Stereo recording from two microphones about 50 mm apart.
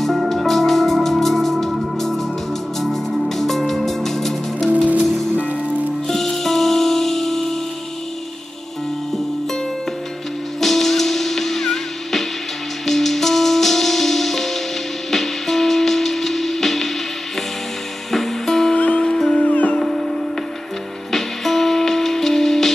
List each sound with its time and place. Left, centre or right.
0.0 s music: centre
6.0 s music: centre
10.6 s music: centre
18.1 s music: centre
18.8 s music: left
19.0 s music: centre
19.4 s music: left
19.7 s music: centre